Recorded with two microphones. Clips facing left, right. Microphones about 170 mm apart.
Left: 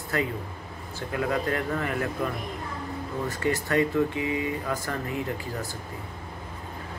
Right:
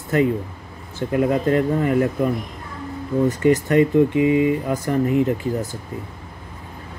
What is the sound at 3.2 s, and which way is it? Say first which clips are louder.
Speech: right 10 dB; 20° right (ahead or behind).